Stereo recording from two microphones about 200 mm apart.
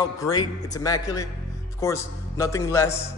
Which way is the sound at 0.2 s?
20° left (ahead or behind).